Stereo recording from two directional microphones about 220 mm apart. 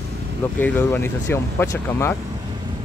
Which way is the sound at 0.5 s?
10° left (ahead or behind).